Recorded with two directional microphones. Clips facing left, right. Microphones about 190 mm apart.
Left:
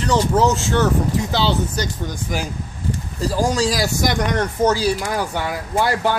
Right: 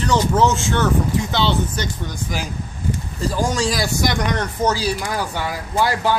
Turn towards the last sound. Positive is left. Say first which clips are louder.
# even
turn(degrees=55)  # may be behind; listen again after turning